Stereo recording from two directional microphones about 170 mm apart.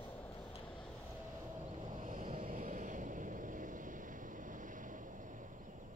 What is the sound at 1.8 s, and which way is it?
Vehicle, 45° right (ahead or behind).